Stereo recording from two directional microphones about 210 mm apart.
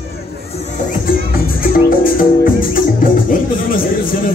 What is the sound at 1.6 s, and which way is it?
Music, 40° left (ahead or behind).